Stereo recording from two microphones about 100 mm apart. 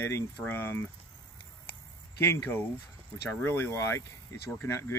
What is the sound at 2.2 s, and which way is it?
Speech, 25° left (ahead or behind).